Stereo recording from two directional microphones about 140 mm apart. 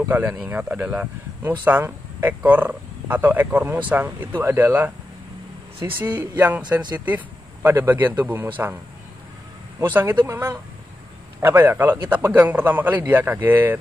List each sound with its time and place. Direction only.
0.4 s a man's voice: 10° right (ahead or behind)
9.9 s a man's voice: 15° right (ahead or behind)